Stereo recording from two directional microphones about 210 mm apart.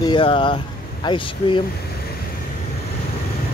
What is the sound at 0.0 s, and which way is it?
Speech, 25° left (ahead or behind).